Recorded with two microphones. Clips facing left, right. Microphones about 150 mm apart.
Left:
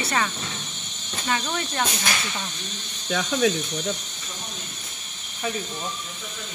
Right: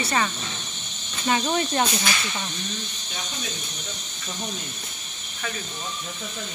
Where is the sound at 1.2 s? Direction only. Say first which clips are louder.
Right 4 dB; 20° right (ahead or behind).